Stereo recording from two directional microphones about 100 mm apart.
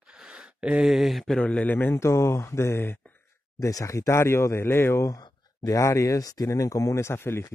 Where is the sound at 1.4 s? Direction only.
15° left (ahead or behind).